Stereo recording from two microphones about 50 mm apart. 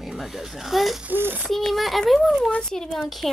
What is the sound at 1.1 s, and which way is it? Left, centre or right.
Speech, right.